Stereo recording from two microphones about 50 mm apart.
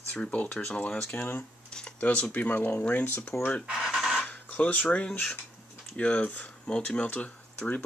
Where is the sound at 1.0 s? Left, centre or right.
Left.